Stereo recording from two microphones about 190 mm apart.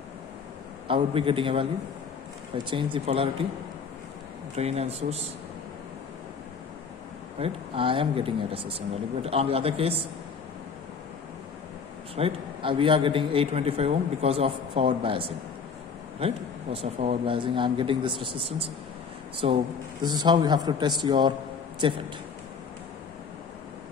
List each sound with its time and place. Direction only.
0.8 s a man's voice: 30° right (ahead or behind)
2.7 s a man's voice: 25° right (ahead or behind)
4.6 s speech: 35° right (ahead or behind)
7.3 s speech: 30° right (ahead or behind)
12.2 s a man's voice: 30° right (ahead or behind)